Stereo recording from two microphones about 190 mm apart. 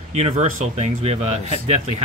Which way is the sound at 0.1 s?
35° right (ahead or behind).